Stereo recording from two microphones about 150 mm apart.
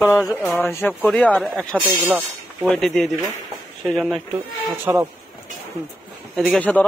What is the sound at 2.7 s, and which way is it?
Speech, 5° left (ahead or behind).